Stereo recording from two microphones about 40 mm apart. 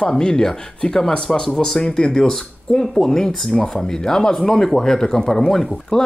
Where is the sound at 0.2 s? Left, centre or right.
Centre.